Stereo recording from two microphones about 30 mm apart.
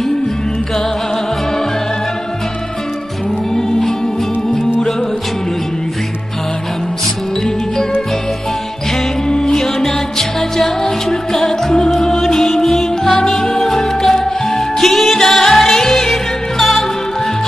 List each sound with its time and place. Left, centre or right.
3.5 s music: centre
9.6 s music: centre
10.6 s music: centre